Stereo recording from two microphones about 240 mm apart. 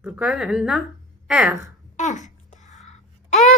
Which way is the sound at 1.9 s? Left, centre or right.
Left.